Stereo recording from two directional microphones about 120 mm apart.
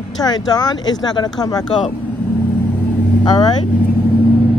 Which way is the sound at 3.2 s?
35° left (ahead or behind).